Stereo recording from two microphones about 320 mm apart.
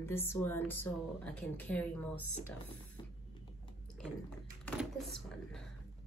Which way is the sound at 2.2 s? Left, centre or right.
Left.